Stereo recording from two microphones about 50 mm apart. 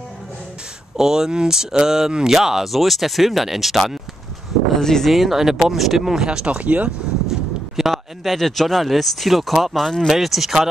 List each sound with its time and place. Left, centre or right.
0.9 s speech: centre
4.7 s speech: centre
5.1 s speech: centre
6.2 s speech: centre
6.6 s speech: right
7.2 s a sound: centre
8.4 s speech: centre